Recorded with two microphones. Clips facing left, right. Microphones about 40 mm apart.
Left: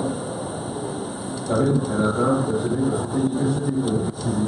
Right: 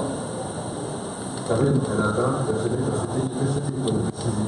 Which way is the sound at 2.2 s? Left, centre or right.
Centre.